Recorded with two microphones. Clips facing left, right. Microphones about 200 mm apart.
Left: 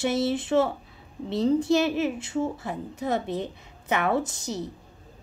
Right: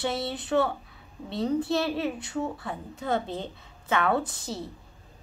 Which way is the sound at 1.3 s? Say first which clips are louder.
Left 4 dB; 25° left (ahead or behind).